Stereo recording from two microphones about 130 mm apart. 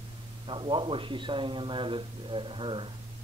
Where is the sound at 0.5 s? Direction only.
40° right (ahead or behind).